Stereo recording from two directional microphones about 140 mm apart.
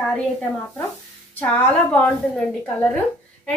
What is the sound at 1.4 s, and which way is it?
A woman's voice, 10° left (ahead or behind).